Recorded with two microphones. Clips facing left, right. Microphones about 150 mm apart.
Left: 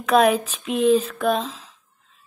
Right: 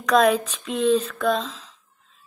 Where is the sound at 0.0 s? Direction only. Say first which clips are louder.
Left 1 dB; 5° left (ahead or behind).